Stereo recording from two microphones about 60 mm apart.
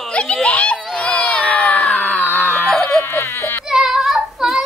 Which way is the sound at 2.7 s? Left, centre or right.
Centre.